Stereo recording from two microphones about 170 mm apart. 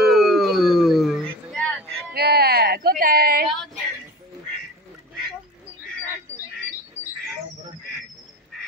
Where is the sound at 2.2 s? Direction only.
65° right (ahead or behind).